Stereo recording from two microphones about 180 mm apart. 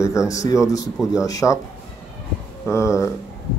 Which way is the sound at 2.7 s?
15° left (ahead or behind).